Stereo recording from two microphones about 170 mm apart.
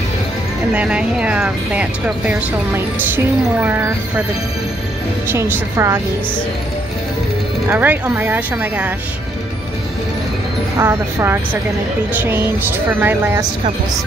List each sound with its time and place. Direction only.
0.7 s speech: 5° right (ahead or behind)
5.3 s speech: 15° right (ahead or behind)
7.7 s speech: 10° right (ahead or behind)
10.8 s speech: 15° right (ahead or behind)